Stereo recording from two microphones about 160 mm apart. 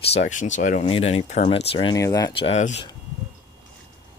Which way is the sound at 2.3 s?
35° left (ahead or behind).